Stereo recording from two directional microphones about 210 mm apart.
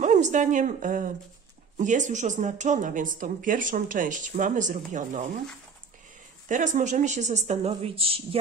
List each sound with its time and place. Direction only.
0.0 s a woman's voice: 35° right (ahead or behind)
6.5 s speech: 35° right (ahead or behind)